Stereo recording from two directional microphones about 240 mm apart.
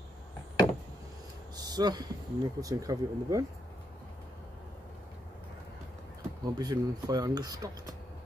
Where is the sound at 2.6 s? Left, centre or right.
Centre.